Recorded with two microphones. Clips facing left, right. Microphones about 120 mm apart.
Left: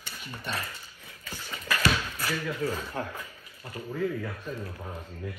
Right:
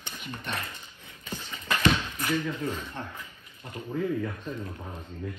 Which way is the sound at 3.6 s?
20° right (ahead or behind).